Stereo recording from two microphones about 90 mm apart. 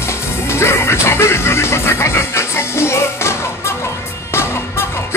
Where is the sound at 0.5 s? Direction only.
30° left (ahead or behind).